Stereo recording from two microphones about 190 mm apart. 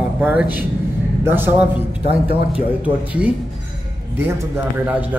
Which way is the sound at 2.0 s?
30° right (ahead or behind).